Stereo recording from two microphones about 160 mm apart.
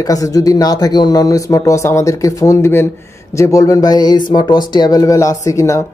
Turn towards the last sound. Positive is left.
turn(degrees=20)  # may be behind; listen again after turning